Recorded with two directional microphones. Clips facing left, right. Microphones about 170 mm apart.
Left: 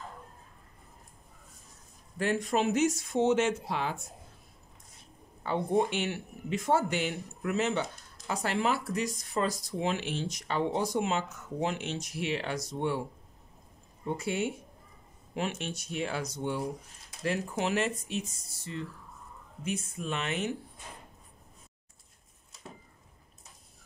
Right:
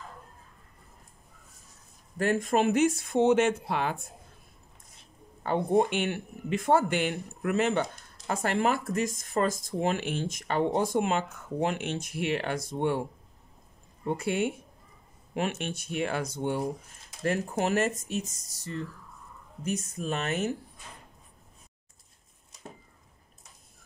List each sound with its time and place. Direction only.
2.1 s speech: 50° right (ahead or behind)
5.4 s speech: 50° right (ahead or behind)
14.0 s speech: 55° right (ahead or behind)